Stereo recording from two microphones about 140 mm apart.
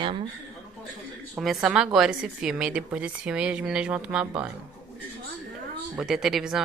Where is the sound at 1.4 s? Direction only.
5° right (ahead or behind).